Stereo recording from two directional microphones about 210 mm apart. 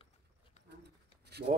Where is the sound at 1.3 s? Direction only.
50° right (ahead or behind).